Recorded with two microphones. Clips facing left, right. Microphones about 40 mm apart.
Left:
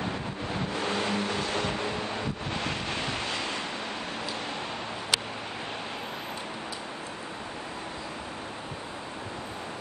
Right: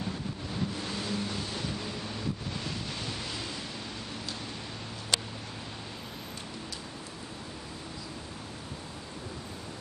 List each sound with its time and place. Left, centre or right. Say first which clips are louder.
0.0 s vehicle: left 4 dB; left